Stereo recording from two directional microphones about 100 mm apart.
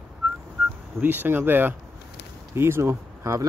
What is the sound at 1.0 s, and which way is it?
Speech, 20° right (ahead or behind).